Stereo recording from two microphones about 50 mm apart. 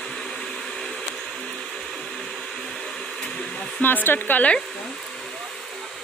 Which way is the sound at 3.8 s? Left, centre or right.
Left.